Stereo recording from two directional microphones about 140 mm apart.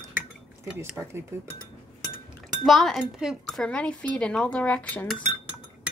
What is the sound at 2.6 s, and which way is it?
Speech, centre (ahead or behind).